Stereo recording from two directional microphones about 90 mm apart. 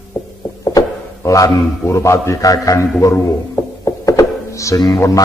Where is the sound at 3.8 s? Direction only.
35° left (ahead or behind).